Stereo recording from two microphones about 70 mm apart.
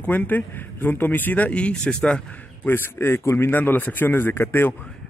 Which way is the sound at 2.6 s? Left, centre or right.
Left.